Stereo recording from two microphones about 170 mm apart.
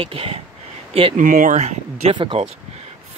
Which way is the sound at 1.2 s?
50° right (ahead or behind).